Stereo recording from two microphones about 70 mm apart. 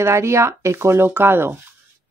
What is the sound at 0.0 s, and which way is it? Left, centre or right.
Speech, right.